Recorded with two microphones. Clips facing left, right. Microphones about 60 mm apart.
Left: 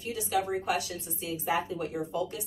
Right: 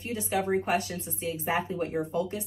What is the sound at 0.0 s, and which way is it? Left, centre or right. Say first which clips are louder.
A woman's voice: right 1 dB; right.